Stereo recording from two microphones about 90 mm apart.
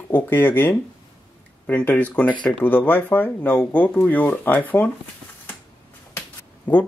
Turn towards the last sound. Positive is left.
turn(degrees=20)  # may be behind; listen again after turning